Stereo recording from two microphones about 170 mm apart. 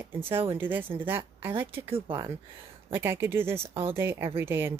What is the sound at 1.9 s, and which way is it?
Speech, 35° right (ahead or behind).